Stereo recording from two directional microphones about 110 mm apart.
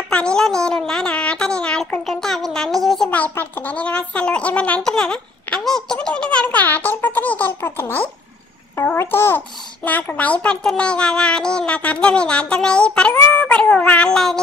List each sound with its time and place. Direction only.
0.1 s speech: 10° left (ahead or behind)
3.1 s a child's voice: 15° left (ahead or behind)